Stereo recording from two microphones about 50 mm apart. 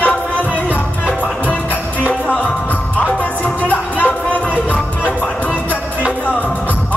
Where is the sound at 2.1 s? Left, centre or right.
Left.